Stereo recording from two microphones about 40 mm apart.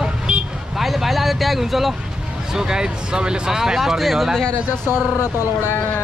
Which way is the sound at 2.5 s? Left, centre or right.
Centre.